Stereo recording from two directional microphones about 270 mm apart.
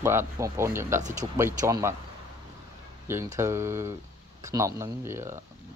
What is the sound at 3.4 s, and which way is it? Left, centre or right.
Speech, centre.